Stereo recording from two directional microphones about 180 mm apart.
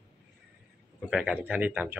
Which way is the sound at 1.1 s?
5° right (ahead or behind).